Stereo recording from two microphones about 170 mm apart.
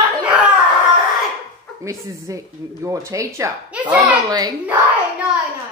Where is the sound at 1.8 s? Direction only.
15° right (ahead or behind).